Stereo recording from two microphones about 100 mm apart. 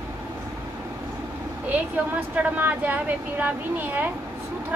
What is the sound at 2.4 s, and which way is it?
A woman's voice, 15° right (ahead or behind).